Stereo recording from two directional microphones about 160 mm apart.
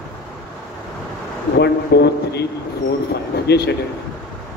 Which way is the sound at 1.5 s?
90° left.